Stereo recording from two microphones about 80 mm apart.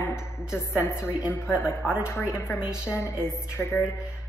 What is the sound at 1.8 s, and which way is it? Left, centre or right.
Speech, centre.